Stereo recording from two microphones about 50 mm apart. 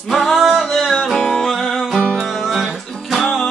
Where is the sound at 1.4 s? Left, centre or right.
Centre.